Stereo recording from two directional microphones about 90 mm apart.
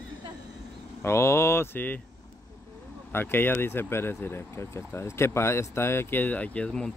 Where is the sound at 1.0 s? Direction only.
30° left (ahead or behind).